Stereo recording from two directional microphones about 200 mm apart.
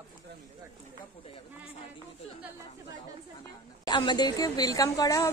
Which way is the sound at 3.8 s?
20° left (ahead or behind).